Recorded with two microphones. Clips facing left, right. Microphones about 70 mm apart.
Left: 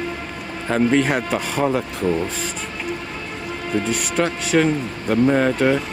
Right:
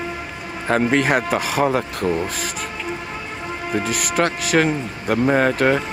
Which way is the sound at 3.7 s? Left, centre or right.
Centre.